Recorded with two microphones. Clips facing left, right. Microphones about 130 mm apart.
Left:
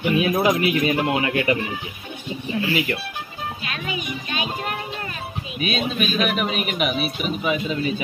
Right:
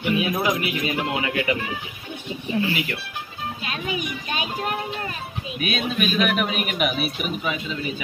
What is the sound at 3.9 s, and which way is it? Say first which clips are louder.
Speech: even; 40° right (ahead or behind).